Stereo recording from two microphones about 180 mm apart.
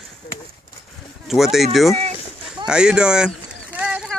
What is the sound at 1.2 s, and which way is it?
Speech, centre (ahead or behind).